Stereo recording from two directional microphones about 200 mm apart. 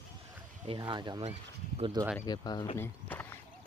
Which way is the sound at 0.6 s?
20° right (ahead or behind).